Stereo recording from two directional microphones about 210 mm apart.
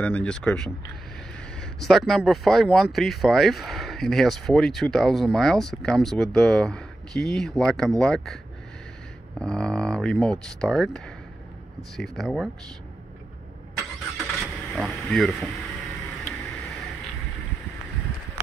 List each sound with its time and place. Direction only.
0.0 s speech: 5° left (ahead or behind)
9.4 s speech: 5° left (ahead or behind)
12.0 s speech: centre (ahead or behind)
14.1 s vehicle: centre (ahead or behind)